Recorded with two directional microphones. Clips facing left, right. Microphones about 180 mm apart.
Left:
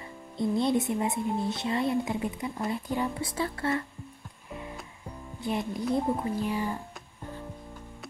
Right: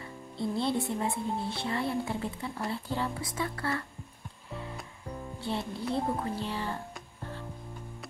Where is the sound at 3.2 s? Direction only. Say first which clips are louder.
Left 3 dB; 25° left (ahead or behind).